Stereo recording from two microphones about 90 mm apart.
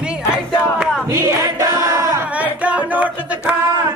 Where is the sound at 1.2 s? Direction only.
40° right (ahead or behind).